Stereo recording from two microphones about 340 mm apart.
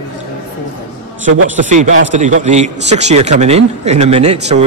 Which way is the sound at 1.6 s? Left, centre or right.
Right.